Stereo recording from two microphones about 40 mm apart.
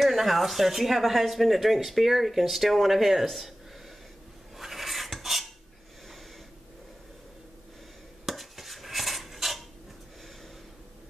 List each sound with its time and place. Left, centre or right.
0.0 s speech: centre
4.6 s filing: centre
8.3 s dishes: centre